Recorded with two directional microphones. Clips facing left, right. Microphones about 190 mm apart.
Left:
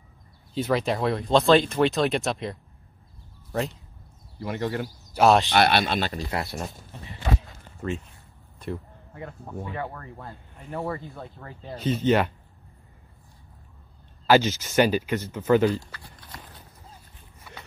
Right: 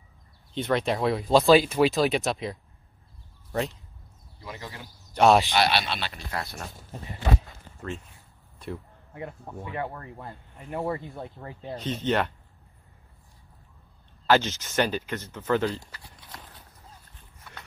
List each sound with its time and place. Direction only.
0.6 s speech: centre (ahead or behind)
4.4 s speech: 65° left (ahead or behind)
5.1 s speech: centre (ahead or behind)
5.5 s speech: 55° left (ahead or behind)
7.8 s speech: 5° left (ahead or behind)
9.1 s speech: 15° right (ahead or behind)
11.7 s speech: 5° left (ahead or behind)
14.2 s speech: 5° left (ahead or behind)
16.0 s horse: centre (ahead or behind)
17.5 s run: 5° left (ahead or behind)